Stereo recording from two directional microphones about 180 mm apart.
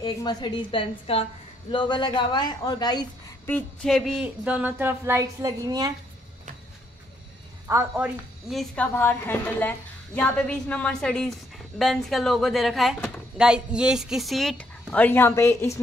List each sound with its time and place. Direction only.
0.0 s a man's voice: 20° left (ahead or behind)
3.4 s speech: 5° left (ahead or behind); by 5.9 s 20° right (ahead or behind)
7.6 s speech: 10° right (ahead or behind)
8.9 s a woman's voice: 10° left (ahead or behind)